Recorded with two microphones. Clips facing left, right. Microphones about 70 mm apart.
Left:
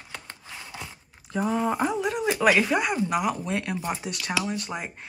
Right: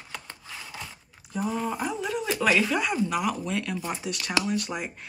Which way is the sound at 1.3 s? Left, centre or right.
Left.